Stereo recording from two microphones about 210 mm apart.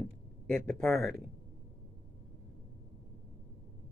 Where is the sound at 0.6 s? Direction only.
Centre (ahead or behind).